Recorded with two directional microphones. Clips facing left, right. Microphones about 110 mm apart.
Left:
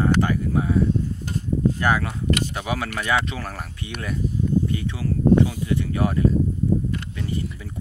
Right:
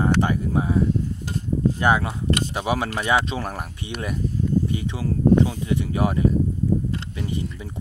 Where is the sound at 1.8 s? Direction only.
20° right (ahead or behind).